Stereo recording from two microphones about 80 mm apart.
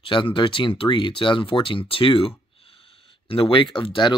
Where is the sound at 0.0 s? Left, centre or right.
Left.